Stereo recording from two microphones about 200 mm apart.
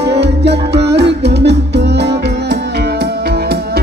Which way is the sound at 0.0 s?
55° right (ahead or behind).